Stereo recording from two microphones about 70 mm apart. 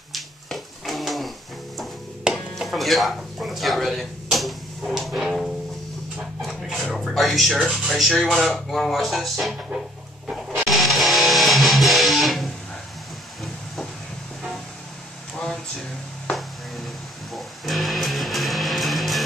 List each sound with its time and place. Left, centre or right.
0.1 s finger snapping: centre
2.3 s a sound: centre
7.9 s speech: centre
10.5 s music: centre
16.3 s music: centre